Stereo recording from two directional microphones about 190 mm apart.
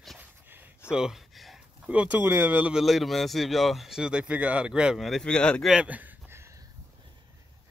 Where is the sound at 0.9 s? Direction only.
5° right (ahead or behind).